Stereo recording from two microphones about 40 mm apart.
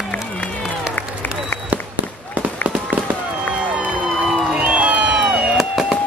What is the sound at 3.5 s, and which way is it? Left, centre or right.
Music, right.